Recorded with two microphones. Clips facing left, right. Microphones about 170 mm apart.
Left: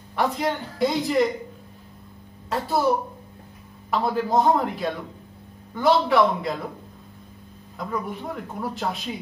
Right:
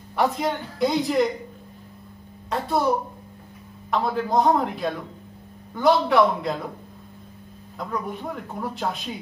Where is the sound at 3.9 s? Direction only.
Centre (ahead or behind).